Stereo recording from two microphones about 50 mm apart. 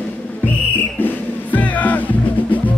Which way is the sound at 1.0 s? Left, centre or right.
Left.